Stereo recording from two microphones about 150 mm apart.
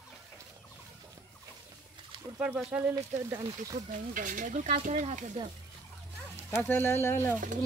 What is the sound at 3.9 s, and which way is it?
Speech, 60° right (ahead or behind).